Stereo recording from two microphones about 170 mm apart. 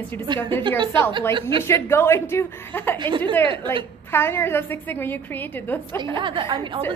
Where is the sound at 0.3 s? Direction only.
25° right (ahead or behind).